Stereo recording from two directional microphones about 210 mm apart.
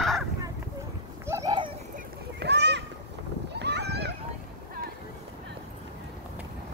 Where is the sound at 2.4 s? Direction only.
55° right (ahead or behind).